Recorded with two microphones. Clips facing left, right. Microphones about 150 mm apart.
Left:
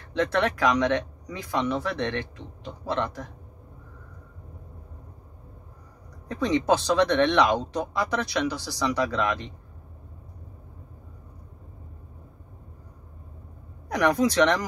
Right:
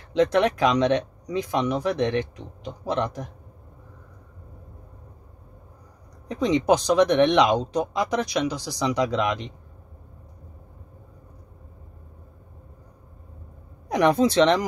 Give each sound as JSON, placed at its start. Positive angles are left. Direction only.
{"t": 0.1, "sound": "speech", "side_deg": -15}
{"t": 6.2, "sound": "speech", "side_deg": -20}
{"t": 13.8, "sound": "speech", "side_deg": -25}